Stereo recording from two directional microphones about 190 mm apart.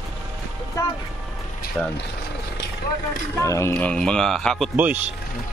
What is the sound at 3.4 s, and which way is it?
Speech, 15° left (ahead or behind).